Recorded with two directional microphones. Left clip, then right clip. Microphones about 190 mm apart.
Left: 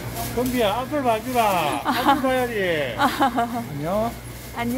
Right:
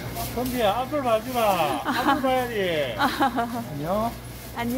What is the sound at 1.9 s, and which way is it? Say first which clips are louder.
Speech: left 5 dB; 5° left (ahead or behind).